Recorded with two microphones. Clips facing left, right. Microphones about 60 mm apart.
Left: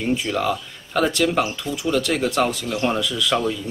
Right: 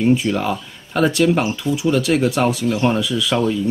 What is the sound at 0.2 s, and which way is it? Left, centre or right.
Speech, centre.